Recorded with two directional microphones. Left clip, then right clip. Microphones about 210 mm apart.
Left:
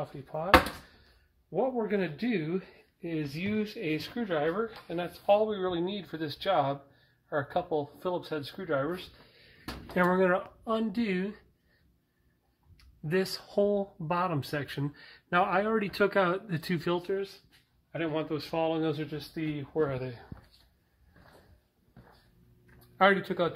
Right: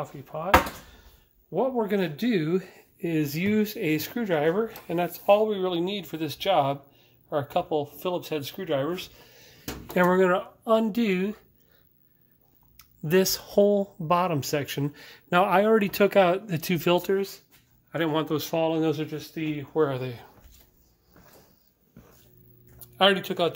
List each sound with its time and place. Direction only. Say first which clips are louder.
1.5 s speech: right 4 dB; 10° right (ahead or behind)
12.7 s speech: right 7 dB; 25° right (ahead or behind)
17.0 s speech: right 7 dB; 40° right (ahead or behind)
18.4 s speech: right 5 dB; 20° right (ahead or behind)
22.9 s speech: right 3 dB; 10° right (ahead or behind)